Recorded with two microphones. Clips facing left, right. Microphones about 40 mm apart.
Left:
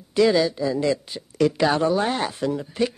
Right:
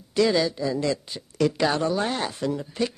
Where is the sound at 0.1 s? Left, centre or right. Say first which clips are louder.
Left 3 dB; centre.